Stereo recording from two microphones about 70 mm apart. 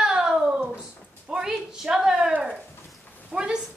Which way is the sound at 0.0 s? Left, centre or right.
Centre.